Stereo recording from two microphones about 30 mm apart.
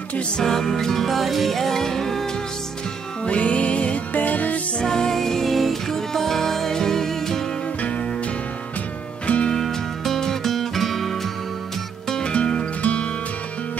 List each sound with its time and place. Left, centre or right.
0.4 s music: centre
1.0 s music: centre
3.3 s music: left
4.1 s music: left
4.8 s music: left
7.8 s music: left
9.2 s music: left
9.5 s music: centre
12.8 s music: left